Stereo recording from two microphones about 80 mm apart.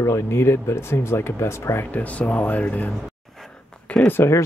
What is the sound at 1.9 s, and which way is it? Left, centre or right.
Speech, centre.